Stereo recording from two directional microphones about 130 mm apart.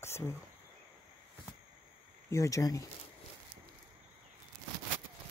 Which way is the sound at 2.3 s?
25° left (ahead or behind).